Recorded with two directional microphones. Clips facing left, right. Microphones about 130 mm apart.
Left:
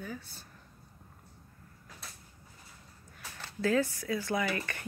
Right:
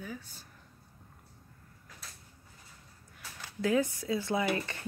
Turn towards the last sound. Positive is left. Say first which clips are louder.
# right 2 dB
turn(degrees=-25)  # may be behind; listen again after turning